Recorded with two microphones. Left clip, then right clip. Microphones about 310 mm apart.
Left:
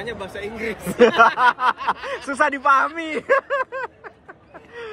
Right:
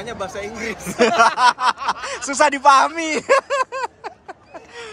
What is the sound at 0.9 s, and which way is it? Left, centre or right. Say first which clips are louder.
Speech: left 1 dB; centre.